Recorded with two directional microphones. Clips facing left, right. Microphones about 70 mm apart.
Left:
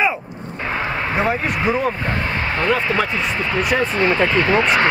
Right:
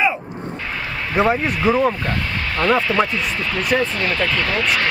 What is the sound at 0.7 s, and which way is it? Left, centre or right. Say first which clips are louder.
Speech: left 7 dB; left.